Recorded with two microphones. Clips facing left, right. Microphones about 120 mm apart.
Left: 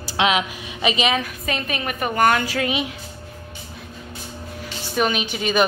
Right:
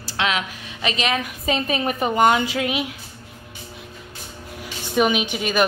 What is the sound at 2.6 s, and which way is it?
Speech, 5° right (ahead or behind).